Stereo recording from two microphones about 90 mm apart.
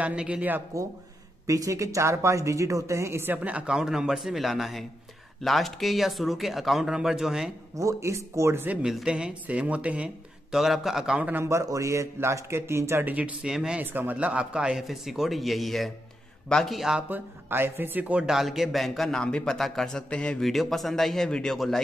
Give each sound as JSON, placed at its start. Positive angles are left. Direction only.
{"t": 0.0, "sound": "speech", "side_deg": -10}
{"t": 1.5, "sound": "speech", "side_deg": -35}
{"t": 3.4, "sound": "a man's voice", "side_deg": -10}
{"t": 7.7, "sound": "speech", "side_deg": -35}
{"t": 8.8, "sound": "speech", "side_deg": -5}
{"t": 11.1, "sound": "speech", "side_deg": -15}
{"t": 11.4, "sound": "speech", "side_deg": -35}
{"t": 13.1, "sound": "a man's voice", "side_deg": -15}
{"t": 17.1, "sound": "a man's voice", "side_deg": -25}